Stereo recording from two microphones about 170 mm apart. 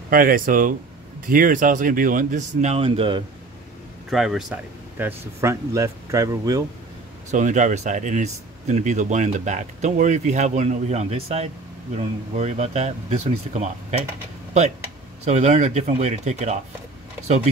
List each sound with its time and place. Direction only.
0.1 s speech: 55° right (ahead or behind); by 3.3 s 30° right (ahead or behind)
4.1 s speech: centre (ahead or behind); by 6.6 s 20° right (ahead or behind)
7.2 s speech: 45° right (ahead or behind)
15.2 s speech: 40° right (ahead or behind)